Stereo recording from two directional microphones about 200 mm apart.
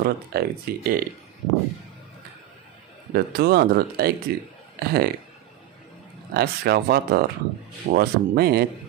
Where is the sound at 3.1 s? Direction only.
50° right (ahead or behind).